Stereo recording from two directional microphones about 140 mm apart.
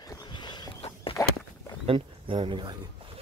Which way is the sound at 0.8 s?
40° left (ahead or behind).